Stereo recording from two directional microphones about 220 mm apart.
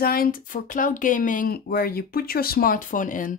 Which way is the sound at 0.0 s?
40° left (ahead or behind).